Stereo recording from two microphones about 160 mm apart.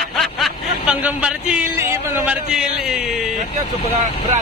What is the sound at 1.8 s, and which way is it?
Speech, 15° right (ahead or behind).